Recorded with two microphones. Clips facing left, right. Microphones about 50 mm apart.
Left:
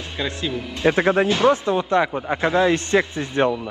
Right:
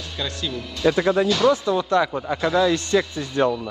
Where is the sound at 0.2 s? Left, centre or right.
Left.